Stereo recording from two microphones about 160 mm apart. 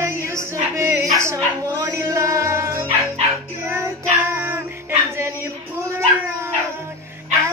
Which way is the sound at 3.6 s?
15° right (ahead or behind).